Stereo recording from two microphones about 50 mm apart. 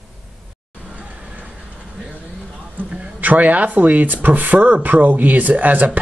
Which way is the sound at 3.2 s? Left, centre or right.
Right.